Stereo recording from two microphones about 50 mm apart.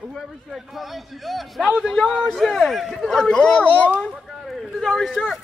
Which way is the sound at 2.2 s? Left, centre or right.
Centre.